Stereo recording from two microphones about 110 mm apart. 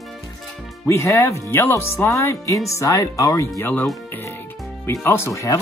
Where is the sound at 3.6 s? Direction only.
20° left (ahead or behind).